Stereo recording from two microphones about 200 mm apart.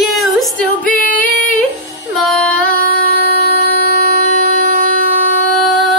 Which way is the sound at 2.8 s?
45° left (ahead or behind).